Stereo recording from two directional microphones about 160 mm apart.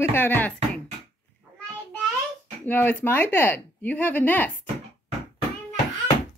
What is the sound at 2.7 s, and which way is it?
Speech, 10° left (ahead or behind).